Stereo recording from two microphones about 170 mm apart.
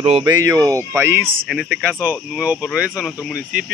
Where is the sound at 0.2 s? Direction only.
20° right (ahead or behind).